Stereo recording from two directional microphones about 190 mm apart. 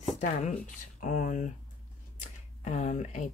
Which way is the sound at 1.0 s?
40° left (ahead or behind).